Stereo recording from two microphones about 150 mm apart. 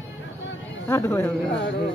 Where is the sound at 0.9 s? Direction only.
20° left (ahead or behind).